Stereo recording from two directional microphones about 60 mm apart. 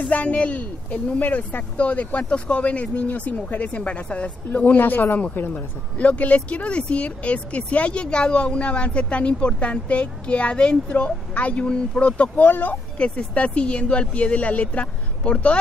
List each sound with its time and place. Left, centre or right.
0.1 s speech: left
12.4 s speech: left
12.9 s speech: centre